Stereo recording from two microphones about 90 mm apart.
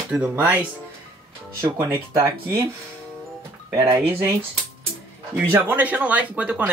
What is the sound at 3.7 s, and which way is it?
Speech, 30° right (ahead or behind).